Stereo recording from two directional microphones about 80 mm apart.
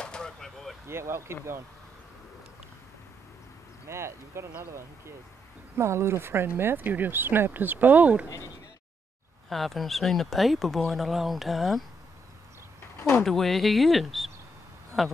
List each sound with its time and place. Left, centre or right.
0.0 s a sound: centre
0.8 s speech: right
3.9 s speech: right
5.8 s speech: right; by 8.3 s centre
9.5 s speech: centre
12.9 s door: left
13.2 s speech: centre